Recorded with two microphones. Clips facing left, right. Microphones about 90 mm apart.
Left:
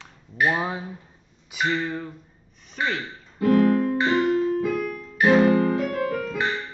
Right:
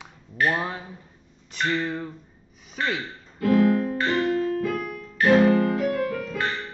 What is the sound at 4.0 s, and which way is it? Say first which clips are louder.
Music: left 2 dB; 10° left (ahead or behind).